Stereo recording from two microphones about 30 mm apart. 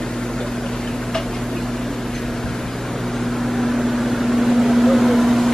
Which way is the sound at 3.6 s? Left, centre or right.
Centre.